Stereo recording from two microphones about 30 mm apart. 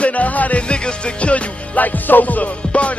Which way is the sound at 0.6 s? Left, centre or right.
Left.